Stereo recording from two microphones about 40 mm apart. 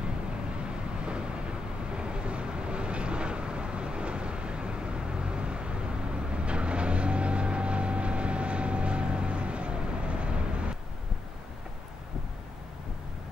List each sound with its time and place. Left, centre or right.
0.7 s vehicle: right